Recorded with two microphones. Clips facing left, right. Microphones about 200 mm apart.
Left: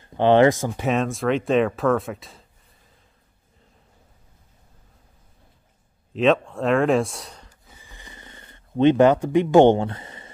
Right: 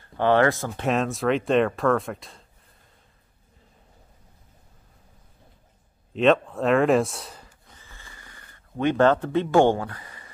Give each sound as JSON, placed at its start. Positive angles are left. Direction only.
{"t": 0.0, "sound": "speech", "side_deg": 20}
{"t": 0.8, "sound": "speech", "side_deg": 0}
{"t": 6.1, "sound": "speech", "side_deg": 0}
{"t": 7.6, "sound": "snoring", "side_deg": 10}